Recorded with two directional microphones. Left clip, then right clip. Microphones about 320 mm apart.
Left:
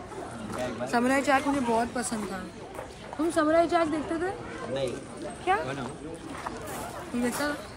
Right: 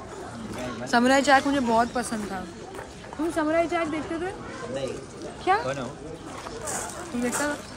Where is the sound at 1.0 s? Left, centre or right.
Right.